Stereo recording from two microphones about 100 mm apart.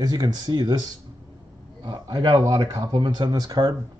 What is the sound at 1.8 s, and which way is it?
Speech, 50° right (ahead or behind).